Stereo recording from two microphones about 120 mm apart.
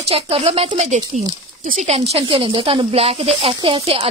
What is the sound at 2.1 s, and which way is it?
Speech, 50° right (ahead or behind).